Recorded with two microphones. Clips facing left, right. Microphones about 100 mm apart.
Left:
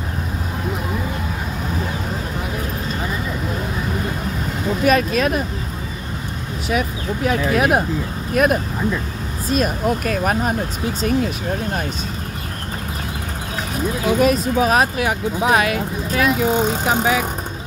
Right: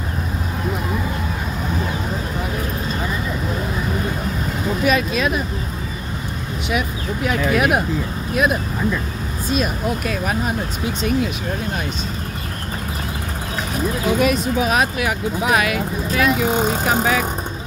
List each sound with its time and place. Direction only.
4.8 s speech: 45° left (ahead or behind)
6.7 s speech: 40° left (ahead or behind)
8.4 s speech: 55° left (ahead or behind)
14.2 s speech: 40° left (ahead or behind)
17.0 s speech: 15° left (ahead or behind)